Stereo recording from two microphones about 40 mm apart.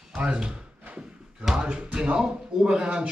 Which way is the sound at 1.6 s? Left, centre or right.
Right.